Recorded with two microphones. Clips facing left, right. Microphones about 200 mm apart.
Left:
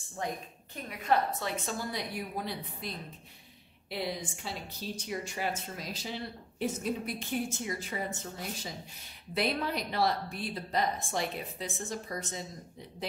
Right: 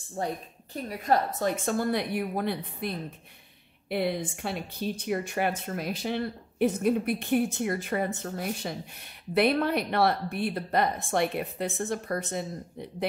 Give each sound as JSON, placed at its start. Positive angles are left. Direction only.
{"t": 0.7, "sound": "a woman's voice", "side_deg": -40}
{"t": 1.7, "sound": "a woman's voice", "side_deg": -60}
{"t": 3.9, "sound": "a woman's voice", "side_deg": -60}